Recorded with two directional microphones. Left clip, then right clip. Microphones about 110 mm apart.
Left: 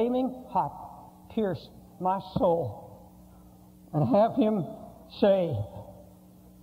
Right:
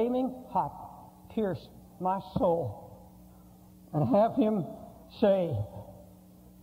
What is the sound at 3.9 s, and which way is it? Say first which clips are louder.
A woman's voice: left 2 dB; 40° right (ahead or behind).